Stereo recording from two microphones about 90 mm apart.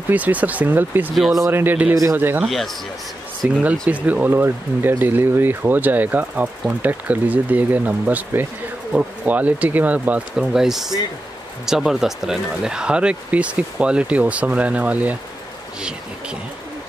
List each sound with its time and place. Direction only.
0.1 s speech: 15° right (ahead or behind)
1.1 s speech: centre (ahead or behind)
1.5 s speech: 20° right (ahead or behind)
2.4 s speech: centre (ahead or behind)
3.4 s speech: 20° right (ahead or behind)